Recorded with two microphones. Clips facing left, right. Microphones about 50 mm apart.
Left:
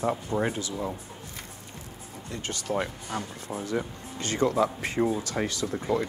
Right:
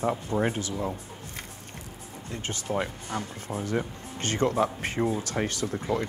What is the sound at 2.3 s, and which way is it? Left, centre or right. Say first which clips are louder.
Speech: even; right.